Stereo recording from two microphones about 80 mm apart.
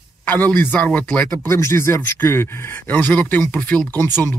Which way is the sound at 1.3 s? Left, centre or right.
Left.